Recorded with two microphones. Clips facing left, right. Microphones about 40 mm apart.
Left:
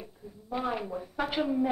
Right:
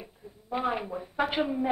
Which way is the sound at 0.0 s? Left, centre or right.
Centre.